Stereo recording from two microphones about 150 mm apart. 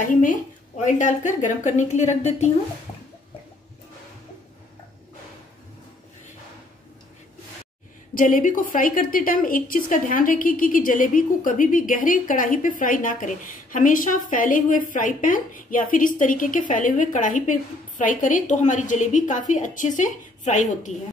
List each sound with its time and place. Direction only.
0.0 s a woman's voice: 60° left (ahead or behind)
8.1 s a woman's voice: 65° left (ahead or behind)